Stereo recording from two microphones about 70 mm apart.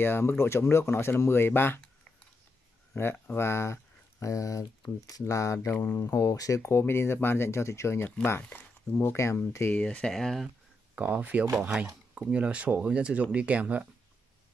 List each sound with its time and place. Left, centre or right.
0.0 s speech: left
3.3 s a sound: left
4.3 s speech: left
9.0 s speech: left
9.7 s speech: centre
10.1 s speech: centre
11.0 s speech: right